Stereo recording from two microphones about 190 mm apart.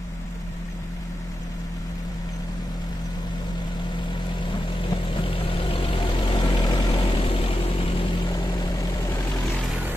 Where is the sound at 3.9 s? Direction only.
25° left (ahead or behind).